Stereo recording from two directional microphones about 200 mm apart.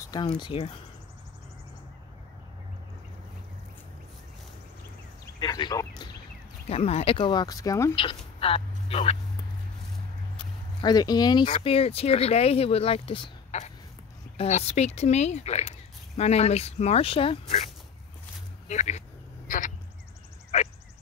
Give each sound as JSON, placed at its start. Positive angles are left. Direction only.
{"t": 0.4, "sound": "speech", "side_deg": 25}
{"t": 5.4, "sound": "a sound", "side_deg": 20}
{"t": 6.7, "sound": "speech", "side_deg": 30}
{"t": 8.4, "sound": "speech", "side_deg": 30}
{"t": 10.3, "sound": "speech", "side_deg": 20}
{"t": 18.7, "sound": "a sound", "side_deg": 35}